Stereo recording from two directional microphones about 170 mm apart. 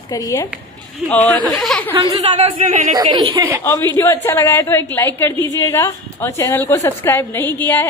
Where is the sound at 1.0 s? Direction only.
5° right (ahead or behind).